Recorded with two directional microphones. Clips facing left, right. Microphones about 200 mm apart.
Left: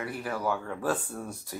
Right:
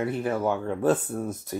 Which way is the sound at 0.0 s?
25° right (ahead or behind).